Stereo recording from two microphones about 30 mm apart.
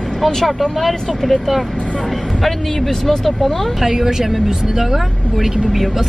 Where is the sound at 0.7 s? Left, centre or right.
Centre.